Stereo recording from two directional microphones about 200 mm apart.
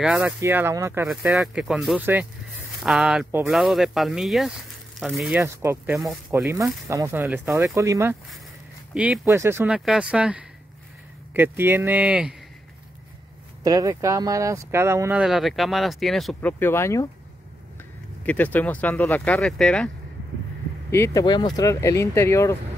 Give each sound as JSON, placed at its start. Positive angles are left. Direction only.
{"t": 0.0, "sound": "speech", "side_deg": -5}
{"t": 1.0, "sound": "speech", "side_deg": 0}
{"t": 5.4, "sound": "speech", "side_deg": -15}
{"t": 13.7, "sound": "speech", "side_deg": -15}
{"t": 18.2, "sound": "speech", "side_deg": 10}
{"t": 20.9, "sound": "speech", "side_deg": 15}